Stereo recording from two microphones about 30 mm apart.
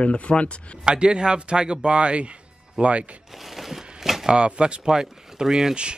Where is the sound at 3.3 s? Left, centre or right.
Centre.